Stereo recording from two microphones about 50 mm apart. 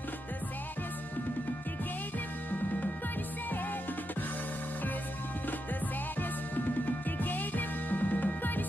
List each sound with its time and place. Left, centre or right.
7.1 s music: left